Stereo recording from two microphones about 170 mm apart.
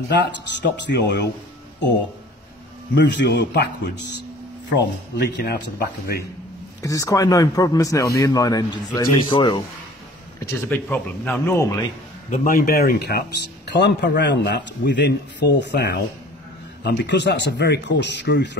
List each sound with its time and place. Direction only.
0.1 s speech: 90° left
2.9 s speech: 90° left; by 6.2 s 65° left (ahead or behind)
6.8 s a man's voice: 20° left (ahead or behind)
10.4 s speech: 15° left (ahead or behind)
12.3 s speech: 55° left (ahead or behind); by 18.6 s 90° left